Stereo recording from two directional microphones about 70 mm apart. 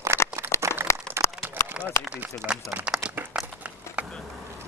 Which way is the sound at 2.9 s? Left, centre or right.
Centre.